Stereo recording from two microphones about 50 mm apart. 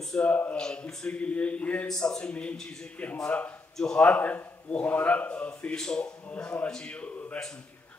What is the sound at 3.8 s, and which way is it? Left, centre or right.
A man's voice, left.